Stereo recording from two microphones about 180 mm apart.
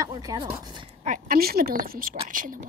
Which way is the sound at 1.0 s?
50° right (ahead or behind).